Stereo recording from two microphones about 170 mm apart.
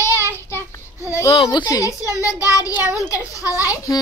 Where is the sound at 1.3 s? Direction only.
30° left (ahead or behind).